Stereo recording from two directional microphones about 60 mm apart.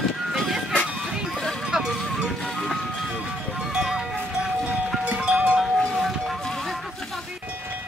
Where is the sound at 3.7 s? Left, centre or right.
Centre.